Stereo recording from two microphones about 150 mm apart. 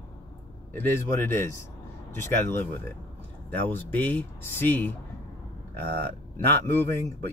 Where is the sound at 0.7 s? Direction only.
15° left (ahead or behind).